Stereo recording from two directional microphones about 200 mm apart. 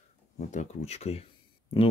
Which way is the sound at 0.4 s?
35° left (ahead or behind).